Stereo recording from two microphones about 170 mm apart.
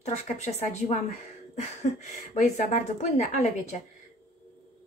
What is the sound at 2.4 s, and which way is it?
A woman's voice, 45° left (ahead or behind).